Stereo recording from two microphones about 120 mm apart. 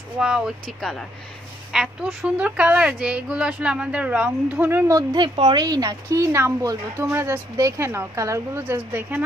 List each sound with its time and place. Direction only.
0.2 s a woman's voice: centre (ahead or behind); by 5.0 s 20° right (ahead or behind)
5.1 s speech: 45° right (ahead or behind); by 9.2 s 15° right (ahead or behind)